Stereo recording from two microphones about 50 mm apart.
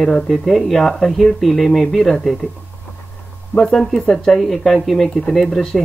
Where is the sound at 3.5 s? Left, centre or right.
Centre.